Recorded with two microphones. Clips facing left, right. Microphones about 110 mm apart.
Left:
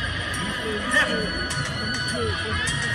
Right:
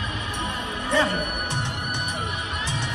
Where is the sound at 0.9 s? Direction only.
25° right (ahead or behind).